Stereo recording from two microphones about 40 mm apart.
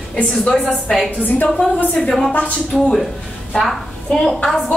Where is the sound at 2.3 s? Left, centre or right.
Left.